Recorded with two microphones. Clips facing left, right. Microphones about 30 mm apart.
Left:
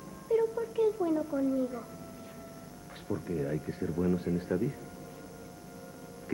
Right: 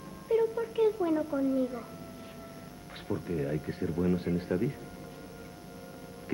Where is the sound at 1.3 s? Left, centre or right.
Right.